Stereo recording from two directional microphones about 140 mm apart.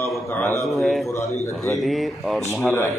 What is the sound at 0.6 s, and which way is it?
Speech, centre (ahead or behind).